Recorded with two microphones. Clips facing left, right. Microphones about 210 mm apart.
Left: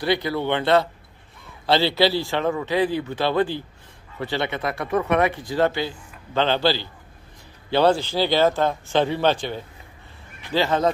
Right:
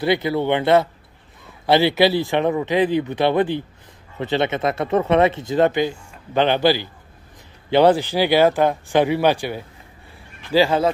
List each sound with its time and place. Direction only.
0.0 s speech: 20° right (ahead or behind)